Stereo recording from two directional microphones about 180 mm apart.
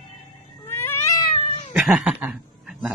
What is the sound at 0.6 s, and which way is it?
Cat, 15° left (ahead or behind).